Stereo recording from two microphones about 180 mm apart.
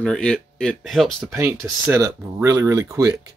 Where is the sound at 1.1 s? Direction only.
15° right (ahead or behind).